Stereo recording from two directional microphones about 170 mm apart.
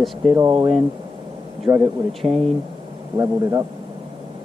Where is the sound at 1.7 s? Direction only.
20° right (ahead or behind).